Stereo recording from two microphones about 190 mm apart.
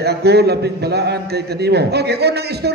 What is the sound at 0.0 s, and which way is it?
A man's voice, 60° right (ahead or behind).